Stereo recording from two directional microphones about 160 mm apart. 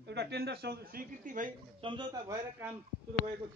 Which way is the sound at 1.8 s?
30° right (ahead or behind).